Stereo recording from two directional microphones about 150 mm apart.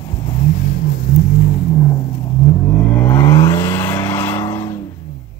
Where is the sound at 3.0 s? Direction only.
15° left (ahead or behind).